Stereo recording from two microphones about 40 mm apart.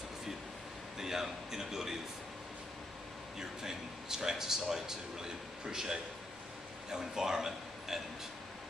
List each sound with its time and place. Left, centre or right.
0.9 s speech: centre
3.3 s a man's voice: centre